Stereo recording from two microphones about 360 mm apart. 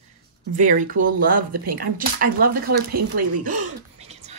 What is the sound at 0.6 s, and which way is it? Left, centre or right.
Speech, right.